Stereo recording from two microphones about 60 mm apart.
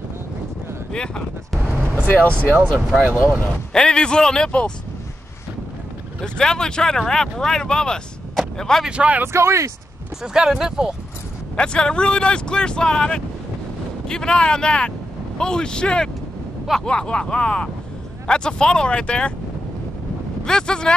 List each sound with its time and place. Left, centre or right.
0.9 s speech: centre
2.0 s speech: left
3.3 s speech: centre
6.2 s speech: centre
8.4 s vehicle: centre
8.8 s speech: right
9.2 s speech: right
10.2 s speech: centre
11.5 s speech: centre
20.4 s speech: centre